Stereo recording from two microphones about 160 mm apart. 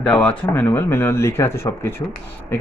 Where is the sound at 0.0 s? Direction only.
5° left (ahead or behind).